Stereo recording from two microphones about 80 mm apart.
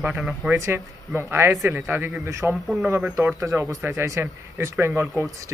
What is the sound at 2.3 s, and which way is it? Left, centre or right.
Speech, right.